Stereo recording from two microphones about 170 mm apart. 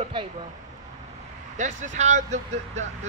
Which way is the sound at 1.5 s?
45° right (ahead or behind).